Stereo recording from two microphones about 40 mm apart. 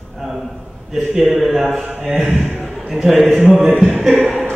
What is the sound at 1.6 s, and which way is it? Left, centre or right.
Speech, centre.